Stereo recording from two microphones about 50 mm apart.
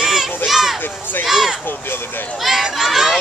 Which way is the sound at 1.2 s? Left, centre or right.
Centre.